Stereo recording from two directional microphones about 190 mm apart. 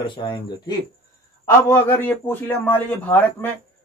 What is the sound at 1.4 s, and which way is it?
A man's voice, 10° left (ahead or behind).